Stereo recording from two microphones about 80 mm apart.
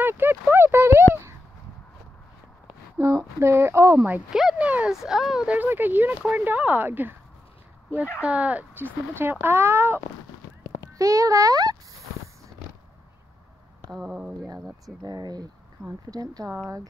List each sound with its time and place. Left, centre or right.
0.0 s clip-clop: right
3.0 s speech: right
4.3 s speech: centre
4.6 s speech: centre
5.5 s speech: right
8.2 s speech: centre
10.9 s a child's voice: right
13.9 s speech: centre
15.0 s a child's voice: right